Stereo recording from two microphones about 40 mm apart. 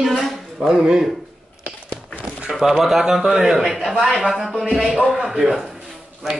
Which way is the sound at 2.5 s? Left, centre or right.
Centre.